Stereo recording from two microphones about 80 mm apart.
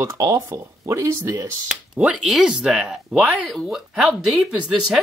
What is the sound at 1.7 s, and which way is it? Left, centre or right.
Speech, centre.